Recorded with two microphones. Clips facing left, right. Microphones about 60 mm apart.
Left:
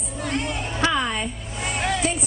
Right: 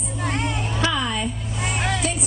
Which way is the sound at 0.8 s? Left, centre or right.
Left.